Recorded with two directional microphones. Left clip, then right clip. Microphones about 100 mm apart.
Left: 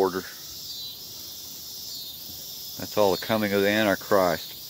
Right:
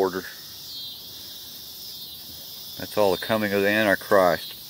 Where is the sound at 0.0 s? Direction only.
20° left (ahead or behind).